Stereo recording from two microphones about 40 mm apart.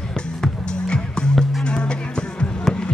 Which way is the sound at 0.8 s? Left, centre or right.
Left.